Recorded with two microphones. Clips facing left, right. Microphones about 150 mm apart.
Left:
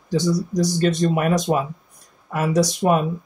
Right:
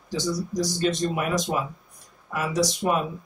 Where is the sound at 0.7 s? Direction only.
50° left (ahead or behind).